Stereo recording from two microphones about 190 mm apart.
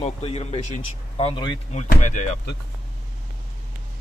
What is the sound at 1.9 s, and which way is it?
Speech, 40° left (ahead or behind).